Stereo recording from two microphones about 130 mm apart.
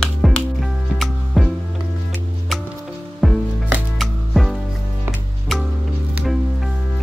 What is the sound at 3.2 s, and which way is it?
Music, centre (ahead or behind).